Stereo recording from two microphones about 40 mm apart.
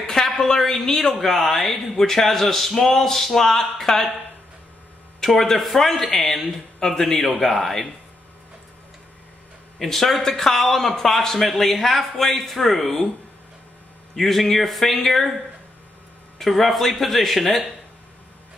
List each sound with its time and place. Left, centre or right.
0.0 s a woman's voice: centre
5.2 s a man's voice: centre
9.8 s a man's voice: centre
14.1 s a man's voice: centre
16.3 s a man's voice: centre